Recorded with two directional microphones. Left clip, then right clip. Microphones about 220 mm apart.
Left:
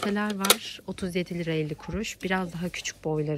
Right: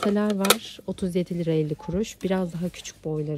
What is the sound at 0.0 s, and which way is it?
Speech, 20° right (ahead or behind).